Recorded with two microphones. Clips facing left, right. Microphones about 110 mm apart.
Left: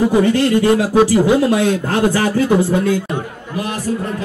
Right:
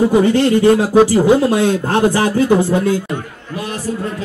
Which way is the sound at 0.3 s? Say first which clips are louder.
Right 2 dB; 25° right (ahead or behind).